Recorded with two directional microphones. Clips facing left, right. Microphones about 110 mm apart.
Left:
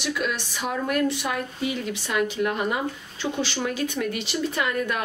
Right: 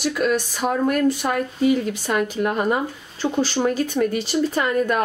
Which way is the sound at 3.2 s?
40° right (ahead or behind).